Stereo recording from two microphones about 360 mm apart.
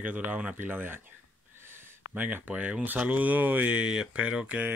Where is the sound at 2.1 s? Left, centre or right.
Centre.